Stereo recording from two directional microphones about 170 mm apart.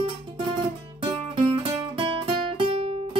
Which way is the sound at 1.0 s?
35° right (ahead or behind).